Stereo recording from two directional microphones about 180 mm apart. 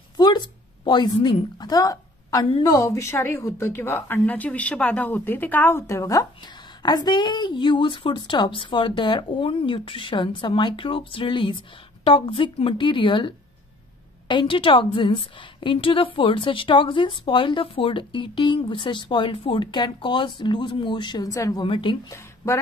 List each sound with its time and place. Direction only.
0.2 s a sound: 25° left (ahead or behind)
1.2 s a woman's voice: 20° left (ahead or behind)
22.1 s speech: 15° left (ahead or behind)